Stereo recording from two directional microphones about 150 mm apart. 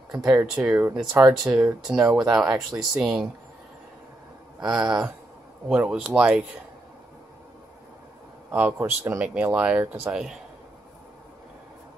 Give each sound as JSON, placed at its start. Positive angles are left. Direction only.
{"t": 0.1, "sound": "speech", "side_deg": -20}
{"t": 1.5, "sound": "speech", "side_deg": -5}
{"t": 4.6, "sound": "speech", "side_deg": -5}
{"t": 8.5, "sound": "speech", "side_deg": -15}